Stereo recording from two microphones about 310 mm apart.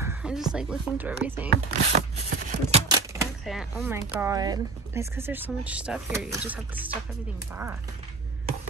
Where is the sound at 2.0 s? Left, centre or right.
Right.